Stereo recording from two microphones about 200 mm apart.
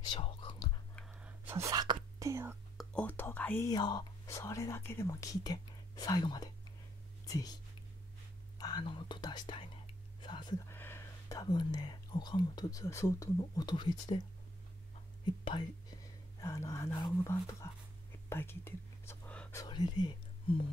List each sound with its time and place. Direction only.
0.1 s whispering: 25° left (ahead or behind)
1.1 s whispering: 10° right (ahead or behind)
2.8 s speech: 5° left (ahead or behind); by 10.5 s 25° left (ahead or behind)
10.7 s speech: 10° left (ahead or behind)
15.2 s speech: 20° left (ahead or behind)
18.3 s whispering: 10° left (ahead or behind)
19.6 s speech: 20° left (ahead or behind)